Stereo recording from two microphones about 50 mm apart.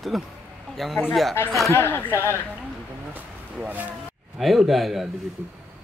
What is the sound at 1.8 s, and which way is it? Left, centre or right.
Speech, left.